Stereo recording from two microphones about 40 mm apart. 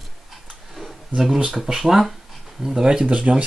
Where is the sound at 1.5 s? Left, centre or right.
Centre.